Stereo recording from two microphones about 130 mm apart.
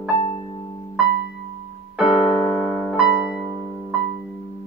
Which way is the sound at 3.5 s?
15° right (ahead or behind).